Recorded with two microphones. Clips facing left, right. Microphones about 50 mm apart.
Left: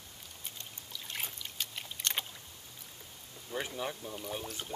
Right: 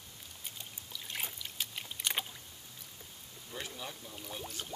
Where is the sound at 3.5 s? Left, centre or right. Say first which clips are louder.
Left 6 dB; left.